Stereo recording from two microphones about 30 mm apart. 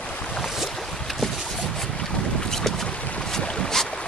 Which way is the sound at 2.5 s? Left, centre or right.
Centre.